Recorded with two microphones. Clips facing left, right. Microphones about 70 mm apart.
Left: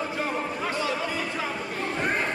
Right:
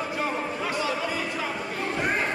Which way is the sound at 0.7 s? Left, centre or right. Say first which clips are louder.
Right 1 dB; right.